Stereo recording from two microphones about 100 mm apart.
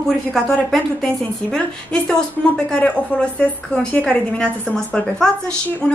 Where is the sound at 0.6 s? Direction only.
5° left (ahead or behind).